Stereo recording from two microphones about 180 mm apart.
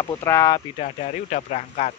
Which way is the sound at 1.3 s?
40° left (ahead or behind).